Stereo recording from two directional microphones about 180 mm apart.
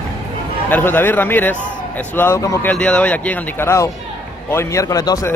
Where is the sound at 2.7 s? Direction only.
5° left (ahead or behind).